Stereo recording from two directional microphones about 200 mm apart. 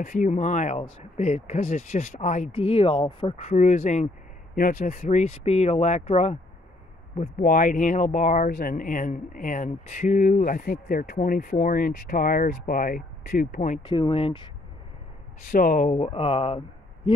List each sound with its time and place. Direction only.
0.0 s speech: 40° left (ahead or behind)
13.8 s speech: 25° left (ahead or behind)
15.5 s speech: 40° left (ahead or behind)